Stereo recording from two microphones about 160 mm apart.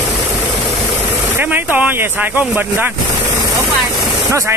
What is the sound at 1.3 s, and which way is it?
Mosquito, 10° right (ahead or behind).